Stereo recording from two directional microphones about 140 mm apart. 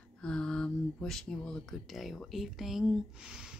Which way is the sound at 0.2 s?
5° left (ahead or behind).